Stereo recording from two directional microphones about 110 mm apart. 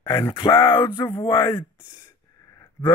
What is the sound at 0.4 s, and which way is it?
Speech, 45° left (ahead or behind).